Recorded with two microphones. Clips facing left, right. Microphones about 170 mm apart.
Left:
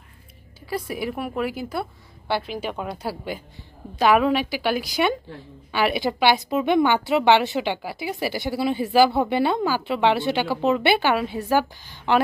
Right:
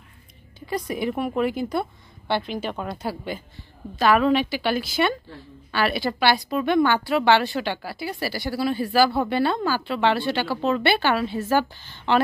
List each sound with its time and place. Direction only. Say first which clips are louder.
0.6 s a woman's voice: right 1 dB; 5° left (ahead or behind)